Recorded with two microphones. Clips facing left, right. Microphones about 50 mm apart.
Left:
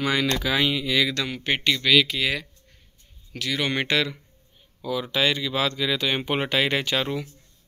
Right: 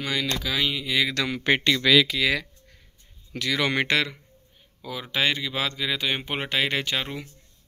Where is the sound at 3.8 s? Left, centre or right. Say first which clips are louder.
Even; right.